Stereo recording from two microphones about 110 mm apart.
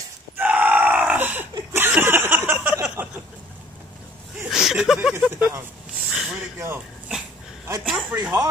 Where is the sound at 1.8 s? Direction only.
15° right (ahead or behind).